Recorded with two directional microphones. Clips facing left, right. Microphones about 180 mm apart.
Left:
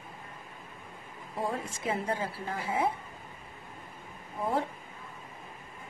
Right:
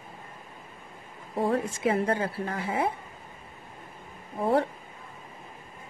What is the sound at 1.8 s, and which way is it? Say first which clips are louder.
Speech: right 4 dB; 70° right (ahead or behind).